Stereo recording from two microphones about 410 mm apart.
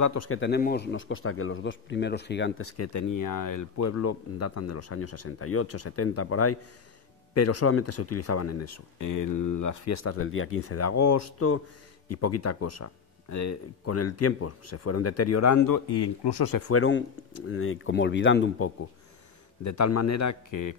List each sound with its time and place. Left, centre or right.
0.0 s a man's voice: left
16.6 s speech: left
19.6 s a man's voice: left